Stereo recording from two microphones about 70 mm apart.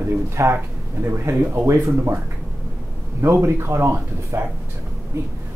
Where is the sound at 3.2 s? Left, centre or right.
Right.